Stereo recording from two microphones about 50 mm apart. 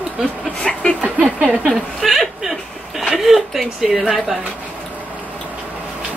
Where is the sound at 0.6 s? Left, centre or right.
Centre.